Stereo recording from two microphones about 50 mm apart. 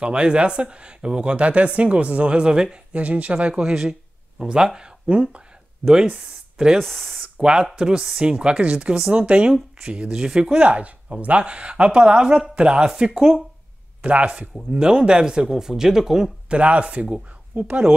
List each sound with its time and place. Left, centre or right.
0.0 s speech: centre
2.9 s speech: right
3.5 s speech: centre
5.0 s speech: right
6.8 s speech: centre
7.2 s speech: centre
10.6 s speech: right
14.0 s speech: right; by 16.3 s centre
16.4 s speech: right